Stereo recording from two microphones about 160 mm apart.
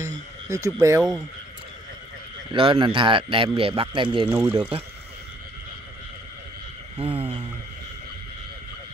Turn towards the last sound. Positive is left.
turn(degrees=-30)  # may be behind; listen again after turning